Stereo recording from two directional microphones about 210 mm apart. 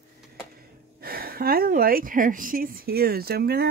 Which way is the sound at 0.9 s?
45° right (ahead or behind).